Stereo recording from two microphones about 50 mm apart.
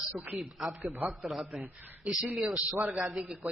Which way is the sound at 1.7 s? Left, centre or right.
Right.